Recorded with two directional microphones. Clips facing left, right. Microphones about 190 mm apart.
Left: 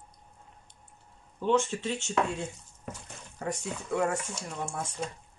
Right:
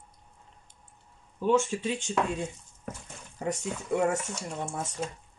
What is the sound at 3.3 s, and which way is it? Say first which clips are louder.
Speech: right 2 dB; 20° right (ahead or behind).